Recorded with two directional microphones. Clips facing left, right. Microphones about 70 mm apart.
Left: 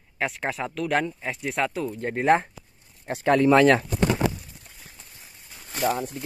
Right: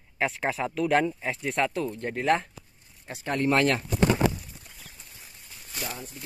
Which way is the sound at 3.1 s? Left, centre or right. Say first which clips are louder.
Left 9 dB; left.